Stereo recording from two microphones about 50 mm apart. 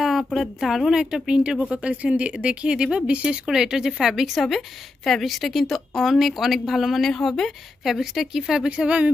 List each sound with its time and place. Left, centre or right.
0.0 s a woman's voice: centre; by 3.3 s right
3.4 s a woman's voice: centre